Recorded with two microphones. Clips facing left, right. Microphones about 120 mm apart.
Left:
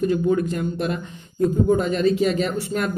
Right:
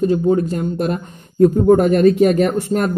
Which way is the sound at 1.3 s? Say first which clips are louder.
Right 7 dB; 60° right (ahead or behind).